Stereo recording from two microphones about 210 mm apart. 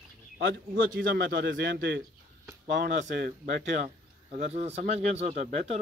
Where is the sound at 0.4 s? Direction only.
65° right (ahead or behind).